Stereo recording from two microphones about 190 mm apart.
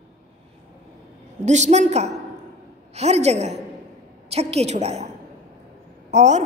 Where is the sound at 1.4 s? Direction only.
40° right (ahead or behind).